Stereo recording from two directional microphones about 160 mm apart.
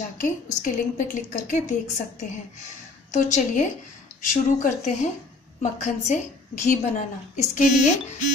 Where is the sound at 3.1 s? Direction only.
50° left (ahead or behind).